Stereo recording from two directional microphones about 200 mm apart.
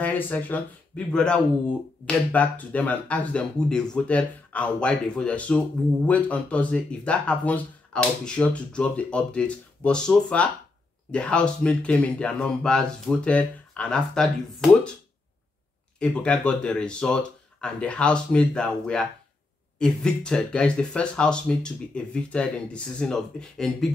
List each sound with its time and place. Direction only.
0.0 s speech: 10° left (ahead or behind)
16.0 s speech: 5° left (ahead or behind)